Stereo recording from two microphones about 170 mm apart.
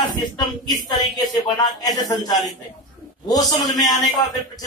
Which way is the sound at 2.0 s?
20° left (ahead or behind).